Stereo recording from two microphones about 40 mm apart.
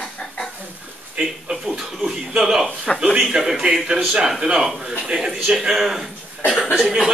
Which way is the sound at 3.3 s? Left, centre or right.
Centre.